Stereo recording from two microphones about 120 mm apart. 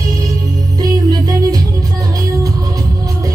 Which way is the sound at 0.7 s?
30° right (ahead or behind).